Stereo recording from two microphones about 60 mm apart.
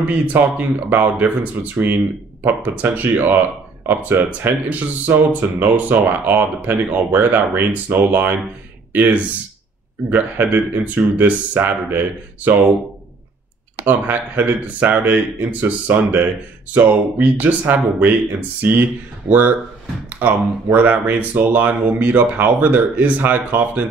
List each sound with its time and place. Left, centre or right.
0.1 s speech: right
13.7 s speech: right